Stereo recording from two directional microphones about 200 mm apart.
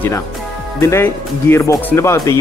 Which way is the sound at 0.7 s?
15° left (ahead or behind).